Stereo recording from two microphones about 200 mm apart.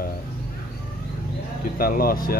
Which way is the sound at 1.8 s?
45° left (ahead or behind).